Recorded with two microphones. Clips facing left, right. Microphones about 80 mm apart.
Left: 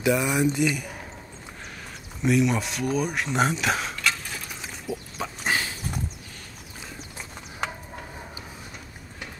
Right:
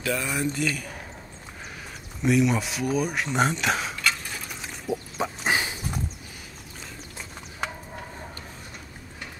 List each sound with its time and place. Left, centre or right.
0.0 s speech: centre
2.2 s a sound: centre
5.2 s dog: centre